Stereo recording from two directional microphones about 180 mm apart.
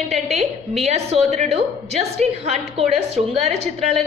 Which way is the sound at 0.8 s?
35° right (ahead or behind).